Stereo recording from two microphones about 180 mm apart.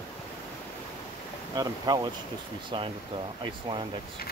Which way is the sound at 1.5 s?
20° right (ahead or behind).